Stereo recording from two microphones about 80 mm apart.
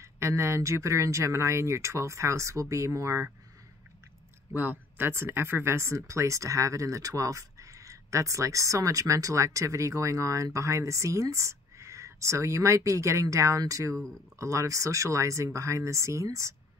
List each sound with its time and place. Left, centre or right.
0.0 s speech: right
4.6 s speech: right